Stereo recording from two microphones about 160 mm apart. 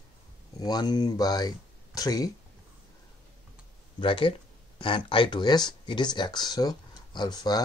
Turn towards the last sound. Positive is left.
turn(degrees=25)  # may be behind; listen again after turning